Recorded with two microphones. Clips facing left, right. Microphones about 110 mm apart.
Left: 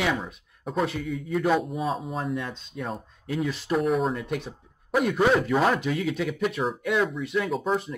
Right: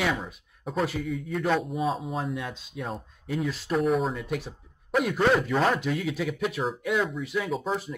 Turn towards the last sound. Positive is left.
turn(degrees=0)  # may be behind; listen again after turning